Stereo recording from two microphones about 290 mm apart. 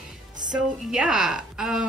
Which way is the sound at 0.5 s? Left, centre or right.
Centre.